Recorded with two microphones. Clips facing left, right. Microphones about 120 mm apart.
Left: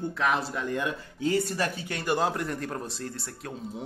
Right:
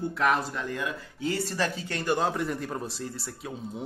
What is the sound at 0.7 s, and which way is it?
Speech, 20° left (ahead or behind).